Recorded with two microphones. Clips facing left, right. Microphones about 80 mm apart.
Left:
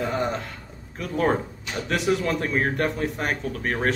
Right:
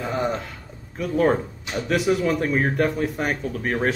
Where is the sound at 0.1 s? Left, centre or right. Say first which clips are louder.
Right 1 dB; centre.